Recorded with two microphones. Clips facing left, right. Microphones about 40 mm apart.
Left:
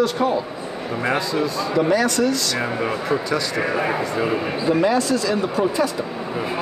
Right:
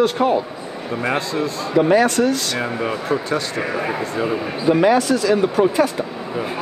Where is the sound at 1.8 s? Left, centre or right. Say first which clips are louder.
Right 4 dB; right.